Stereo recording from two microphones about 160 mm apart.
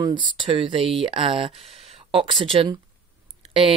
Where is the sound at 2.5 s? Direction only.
35° right (ahead or behind).